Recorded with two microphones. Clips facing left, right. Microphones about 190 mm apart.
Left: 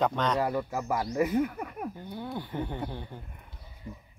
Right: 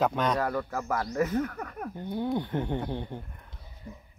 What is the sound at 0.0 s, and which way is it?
Speech, 10° right (ahead or behind).